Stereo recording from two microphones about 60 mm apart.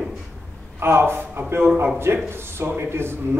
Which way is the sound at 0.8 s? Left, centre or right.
Right.